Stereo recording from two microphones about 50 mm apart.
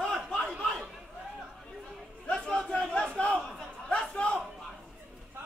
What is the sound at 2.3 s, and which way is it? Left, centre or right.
Crowd, centre.